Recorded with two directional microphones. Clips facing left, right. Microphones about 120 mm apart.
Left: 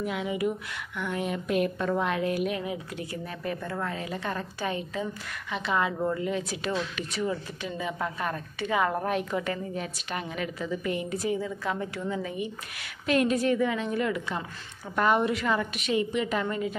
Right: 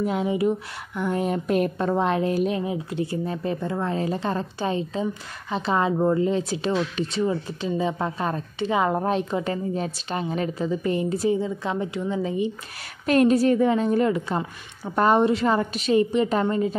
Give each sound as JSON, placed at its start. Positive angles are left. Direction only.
{"t": 0.0, "sound": "speech", "side_deg": -35}
{"t": 13.0, "sound": "speech", "side_deg": -45}